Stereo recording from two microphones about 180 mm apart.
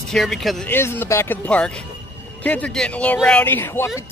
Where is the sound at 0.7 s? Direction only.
10° left (ahead or behind).